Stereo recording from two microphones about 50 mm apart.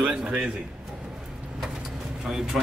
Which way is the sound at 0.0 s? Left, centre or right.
Centre.